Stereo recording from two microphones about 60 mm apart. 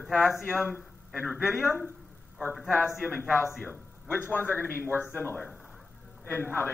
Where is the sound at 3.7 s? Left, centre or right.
Left.